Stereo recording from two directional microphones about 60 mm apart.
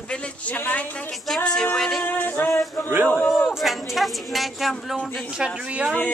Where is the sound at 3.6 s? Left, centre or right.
Centre.